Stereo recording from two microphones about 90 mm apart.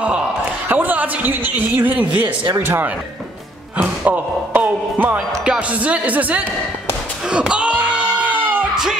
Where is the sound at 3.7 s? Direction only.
20° right (ahead or behind).